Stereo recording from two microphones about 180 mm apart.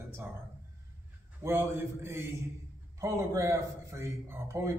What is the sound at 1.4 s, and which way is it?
A man's voice, 15° right (ahead or behind).